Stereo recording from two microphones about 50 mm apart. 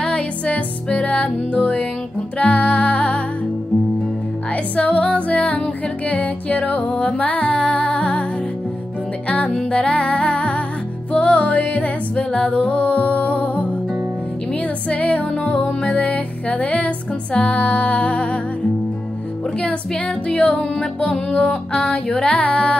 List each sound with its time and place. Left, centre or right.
0.0 s music: left
4.5 s music: left
9.3 s music: left
19.6 s music: left
20.3 s music: left